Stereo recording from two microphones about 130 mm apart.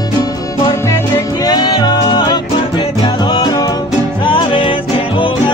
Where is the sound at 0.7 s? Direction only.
20° left (ahead or behind).